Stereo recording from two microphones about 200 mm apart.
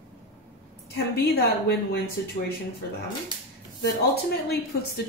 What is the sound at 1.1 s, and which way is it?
Speech, 55° left (ahead or behind).